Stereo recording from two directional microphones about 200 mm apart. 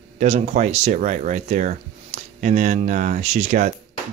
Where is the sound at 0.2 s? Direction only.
35° right (ahead or behind).